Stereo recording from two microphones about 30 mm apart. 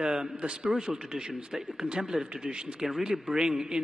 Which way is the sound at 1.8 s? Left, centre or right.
Right.